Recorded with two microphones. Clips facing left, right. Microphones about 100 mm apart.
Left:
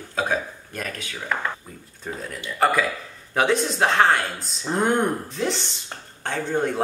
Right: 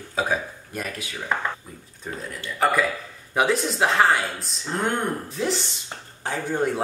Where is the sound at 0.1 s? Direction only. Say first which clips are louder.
Even; 5° right (ahead or behind).